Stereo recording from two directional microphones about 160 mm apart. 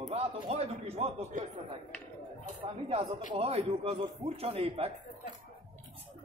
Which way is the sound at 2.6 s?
35° right (ahead or behind).